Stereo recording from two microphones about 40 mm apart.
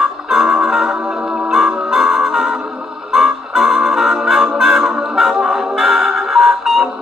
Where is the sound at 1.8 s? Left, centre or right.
Centre.